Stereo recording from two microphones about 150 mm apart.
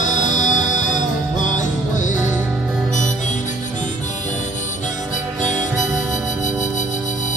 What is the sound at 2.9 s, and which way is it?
Harmonica, 55° left (ahead or behind).